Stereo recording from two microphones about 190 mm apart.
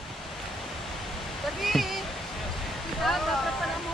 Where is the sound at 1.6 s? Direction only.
Centre (ahead or behind).